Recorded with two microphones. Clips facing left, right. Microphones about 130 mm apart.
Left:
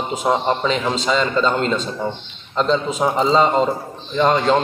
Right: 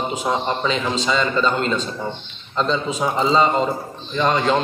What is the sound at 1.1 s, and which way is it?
Speech, 25° left (ahead or behind).